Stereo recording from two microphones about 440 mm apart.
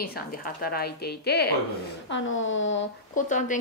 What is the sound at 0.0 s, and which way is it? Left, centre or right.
A woman's voice, centre.